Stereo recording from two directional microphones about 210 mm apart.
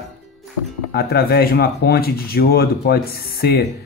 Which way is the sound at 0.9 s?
45° left (ahead or behind).